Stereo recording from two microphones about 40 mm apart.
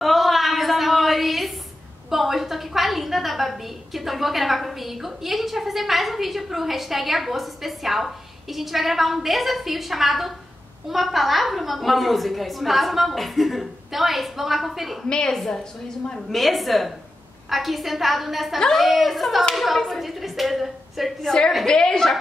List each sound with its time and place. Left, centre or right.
0.0 s a sound: centre
2.0 s a woman's voice: centre
15.0 s a woman's voice: centre
16.3 s a woman's voice: centre
21.2 s a woman's voice: centre